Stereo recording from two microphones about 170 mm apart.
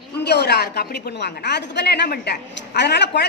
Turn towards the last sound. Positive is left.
turn(degrees=80)